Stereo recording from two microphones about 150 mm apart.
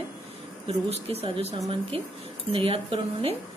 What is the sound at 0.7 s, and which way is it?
Speech, 45° right (ahead or behind).